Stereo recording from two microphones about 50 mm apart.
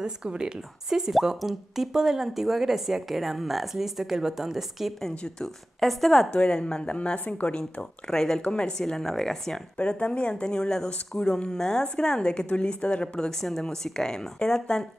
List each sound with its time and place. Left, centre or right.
0.0 s a woman's voice: centre
5.1 s speech: centre
5.8 s speech: centre
6.3 s speech: left
8.1 s a woman's voice: centre
9.8 s a woman's voice: left